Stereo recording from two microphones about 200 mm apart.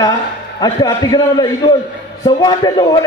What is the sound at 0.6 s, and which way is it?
A man's voice, 20° left (ahead or behind).